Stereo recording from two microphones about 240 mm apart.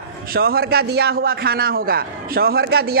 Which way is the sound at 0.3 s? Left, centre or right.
Right.